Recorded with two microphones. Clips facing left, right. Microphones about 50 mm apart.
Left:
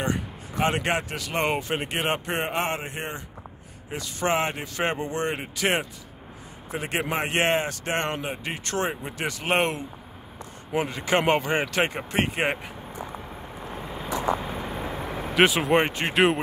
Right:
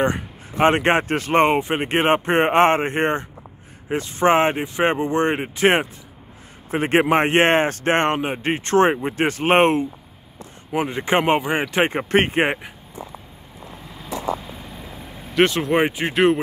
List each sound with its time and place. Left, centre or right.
0.0 s speech: right
3.9 s speech: right
10.7 s speech: right
11.7 s speech: right
13.7 s vehicle: left
14.4 s vehicle: left
15.0 s vehicle: left
15.3 s speech: centre
15.8 s speech: centre